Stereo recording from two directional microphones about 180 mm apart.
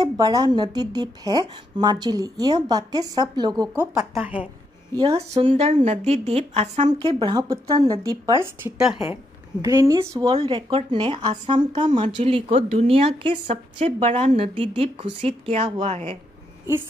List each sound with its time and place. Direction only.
0.2 s a woman's voice: 20° right (ahead or behind)
5.0 s speech: 35° right (ahead or behind)
6.9 s a woman's voice: 25° right (ahead or behind)
8.6 s a woman's voice: 5° right (ahead or behind)
9.1 s speech: 20° right (ahead or behind)
10.3 s speech: 35° right (ahead or behind)